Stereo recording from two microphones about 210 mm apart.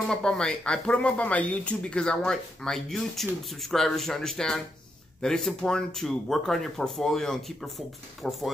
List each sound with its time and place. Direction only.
0.1 s speech: 5° left (ahead or behind)